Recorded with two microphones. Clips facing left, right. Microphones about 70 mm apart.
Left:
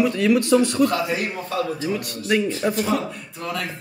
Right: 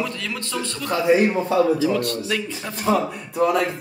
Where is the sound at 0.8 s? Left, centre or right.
Right.